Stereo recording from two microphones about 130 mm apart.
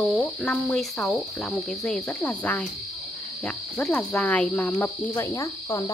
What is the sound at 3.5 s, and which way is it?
Cricket, 10° left (ahead or behind).